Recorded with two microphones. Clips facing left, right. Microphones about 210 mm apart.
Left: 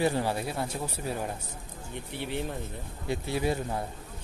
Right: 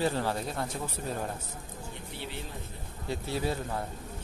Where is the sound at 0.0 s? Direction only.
15° left (ahead or behind).